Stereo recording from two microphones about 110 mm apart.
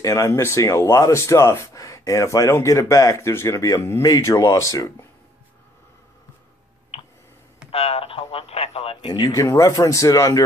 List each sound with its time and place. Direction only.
0.0 s speech: 30° left (ahead or behind)
7.7 s radio: 70° left (ahead or behind)
9.0 s speech: 35° left (ahead or behind)